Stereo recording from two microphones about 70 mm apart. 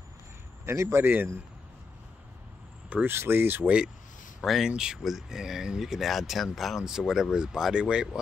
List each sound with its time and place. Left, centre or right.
0.7 s a man's voice: right
1.0 s a man's voice: right
3.1 s speech: right
4.4 s speech: centre